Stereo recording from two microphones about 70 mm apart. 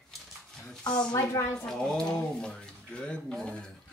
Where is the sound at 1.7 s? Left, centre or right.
Centre.